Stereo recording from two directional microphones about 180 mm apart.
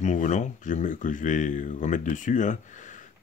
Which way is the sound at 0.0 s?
40° left (ahead or behind).